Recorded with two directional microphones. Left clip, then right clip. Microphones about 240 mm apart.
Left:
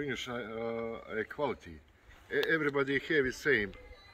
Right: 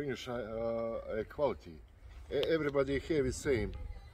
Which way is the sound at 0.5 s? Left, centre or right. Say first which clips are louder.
Right 3 dB; right.